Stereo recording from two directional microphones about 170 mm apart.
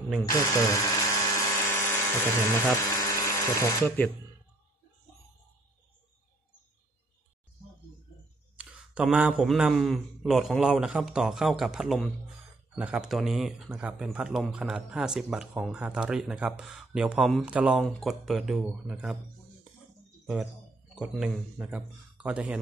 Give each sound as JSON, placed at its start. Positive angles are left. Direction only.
{"t": 0.2, "sound": "dental drill", "side_deg": 20}
{"t": 2.5, "sound": "speech", "side_deg": 15}
{"t": 8.5, "sound": "speech", "side_deg": -5}
{"t": 20.9, "sound": "a man's voice", "side_deg": -5}